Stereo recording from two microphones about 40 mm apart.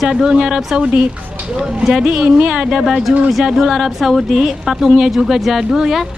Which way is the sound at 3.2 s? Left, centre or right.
Centre.